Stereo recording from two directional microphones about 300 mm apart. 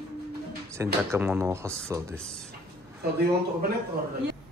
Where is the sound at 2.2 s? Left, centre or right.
Centre.